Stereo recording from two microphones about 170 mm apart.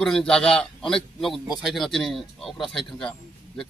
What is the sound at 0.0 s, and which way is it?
A man's voice, 5° left (ahead or behind).